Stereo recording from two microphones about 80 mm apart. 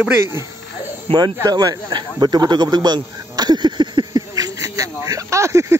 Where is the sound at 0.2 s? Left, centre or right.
Right.